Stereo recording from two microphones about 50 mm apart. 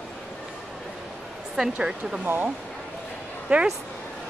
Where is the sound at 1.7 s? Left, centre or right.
Centre.